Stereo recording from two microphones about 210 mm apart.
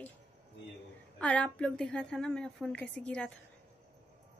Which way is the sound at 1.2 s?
5° left (ahead or behind).